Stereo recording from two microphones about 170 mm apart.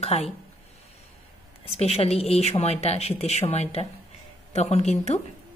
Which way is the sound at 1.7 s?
35° left (ahead or behind).